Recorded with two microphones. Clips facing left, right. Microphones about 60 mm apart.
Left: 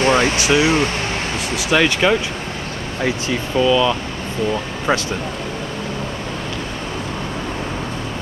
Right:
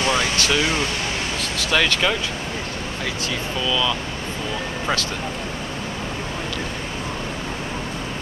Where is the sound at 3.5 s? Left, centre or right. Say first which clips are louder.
Left 8 dB; left.